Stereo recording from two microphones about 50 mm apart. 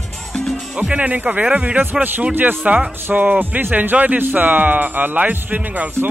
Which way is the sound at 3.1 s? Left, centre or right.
Right.